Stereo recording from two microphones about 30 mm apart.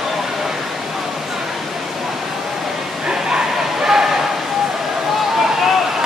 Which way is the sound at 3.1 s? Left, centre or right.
Right.